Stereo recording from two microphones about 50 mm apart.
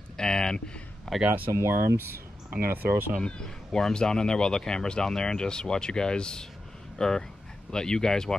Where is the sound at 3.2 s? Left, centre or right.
Centre.